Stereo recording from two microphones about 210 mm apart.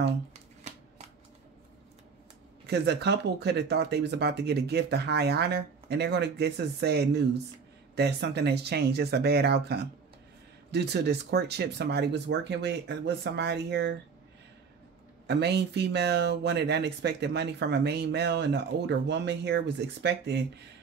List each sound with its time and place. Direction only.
2.6 s speech: 55° right (ahead or behind)
15.2 s speech: 55° right (ahead or behind)